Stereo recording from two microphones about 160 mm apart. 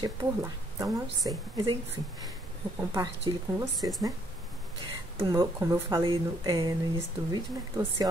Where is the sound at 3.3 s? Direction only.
30° right (ahead or behind).